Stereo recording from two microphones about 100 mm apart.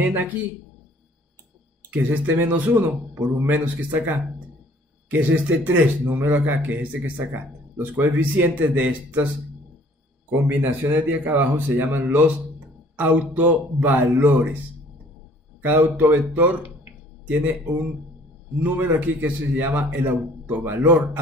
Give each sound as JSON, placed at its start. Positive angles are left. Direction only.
{"t": 0.0, "sound": "a man's voice", "side_deg": -15}
{"t": 1.9, "sound": "a man's voice", "side_deg": -20}
{"t": 10.3, "sound": "a man's voice", "side_deg": -20}
{"t": 15.6, "sound": "a man's voice", "side_deg": -20}